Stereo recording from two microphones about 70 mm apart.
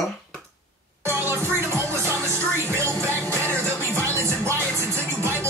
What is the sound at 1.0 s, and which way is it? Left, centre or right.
Music, right.